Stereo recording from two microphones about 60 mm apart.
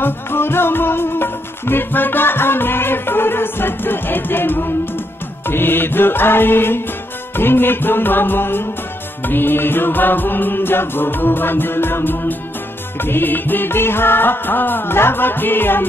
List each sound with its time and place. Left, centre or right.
0.0 s music: left